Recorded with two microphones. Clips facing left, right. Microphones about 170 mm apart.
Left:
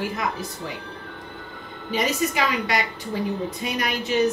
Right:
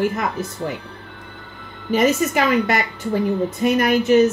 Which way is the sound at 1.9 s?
50° right (ahead or behind).